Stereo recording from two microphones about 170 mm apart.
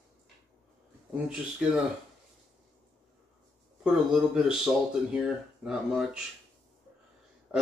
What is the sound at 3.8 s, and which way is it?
Speech, 5° right (ahead or behind).